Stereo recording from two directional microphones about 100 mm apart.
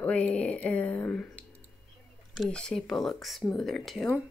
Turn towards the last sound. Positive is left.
turn(degrees=5)  # may be behind; listen again after turning